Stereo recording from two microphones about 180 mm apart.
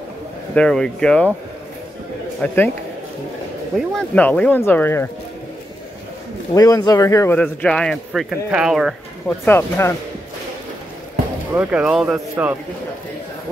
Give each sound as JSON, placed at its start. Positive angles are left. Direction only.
{"t": 0.6, "sound": "a man's voice", "side_deg": 5}
{"t": 2.4, "sound": "speech", "side_deg": 10}
{"t": 3.7, "sound": "speech", "side_deg": 5}
{"t": 6.5, "sound": "speech", "side_deg": 20}
{"t": 7.3, "sound": "a man's voice", "side_deg": 5}
{"t": 9.4, "sound": "speech", "side_deg": 15}
{"t": 11.5, "sound": "speech", "side_deg": -10}